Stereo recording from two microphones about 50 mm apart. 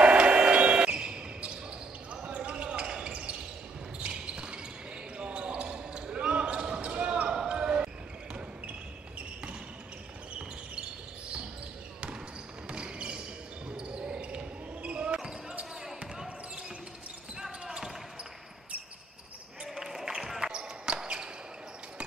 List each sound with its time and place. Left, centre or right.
0.0 s basketball bounce: right
12.6 s basketball bounce: right
17.4 s basketball bounce: centre
19.6 s basketball bounce: centre